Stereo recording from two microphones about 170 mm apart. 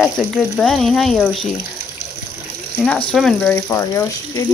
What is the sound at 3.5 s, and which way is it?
Speech, 20° left (ahead or behind).